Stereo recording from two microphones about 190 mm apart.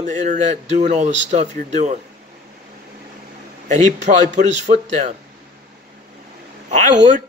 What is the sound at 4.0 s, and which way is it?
A man's voice, 40° right (ahead or behind).